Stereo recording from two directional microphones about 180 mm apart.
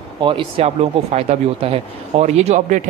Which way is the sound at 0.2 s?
30° right (ahead or behind).